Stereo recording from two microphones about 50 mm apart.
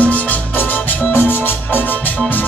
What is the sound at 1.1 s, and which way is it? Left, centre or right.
Music, left.